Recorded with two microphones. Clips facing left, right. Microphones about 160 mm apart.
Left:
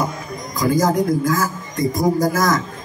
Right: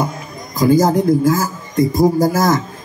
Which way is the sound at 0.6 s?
30° right (ahead or behind).